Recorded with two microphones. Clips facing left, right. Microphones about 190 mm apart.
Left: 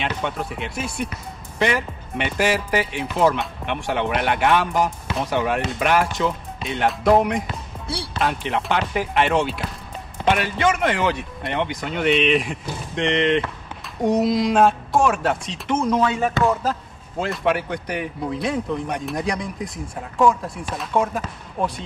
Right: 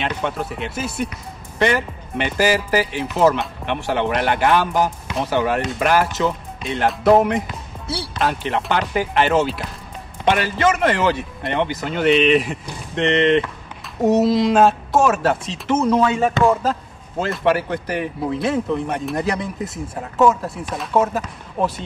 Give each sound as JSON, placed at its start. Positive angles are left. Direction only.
{"t": 0.0, "sound": "speech", "side_deg": 0}
{"t": 16.1, "sound": "speech", "side_deg": -25}
{"t": 17.2, "sound": "speech", "side_deg": 0}